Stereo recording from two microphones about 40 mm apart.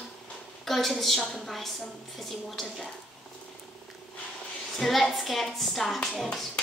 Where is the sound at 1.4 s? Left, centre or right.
Centre.